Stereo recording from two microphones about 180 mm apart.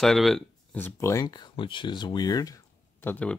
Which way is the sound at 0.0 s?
Centre (ahead or behind).